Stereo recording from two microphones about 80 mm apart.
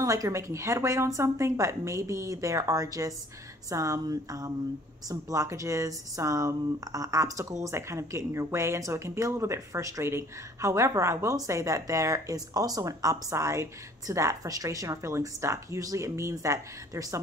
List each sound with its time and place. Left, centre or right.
0.0 s speech: right